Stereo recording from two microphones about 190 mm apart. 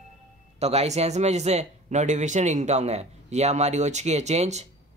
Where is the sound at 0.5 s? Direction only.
35° right (ahead or behind).